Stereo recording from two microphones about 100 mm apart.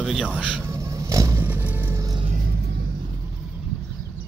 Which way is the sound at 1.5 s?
15° right (ahead or behind).